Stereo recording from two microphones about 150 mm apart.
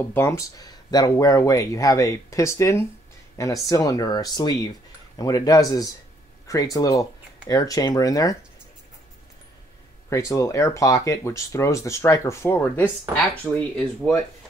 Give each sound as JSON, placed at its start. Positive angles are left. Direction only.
{"t": 0.1, "sound": "speech", "side_deg": 20}
{"t": 10.0, "sound": "speech", "side_deg": 20}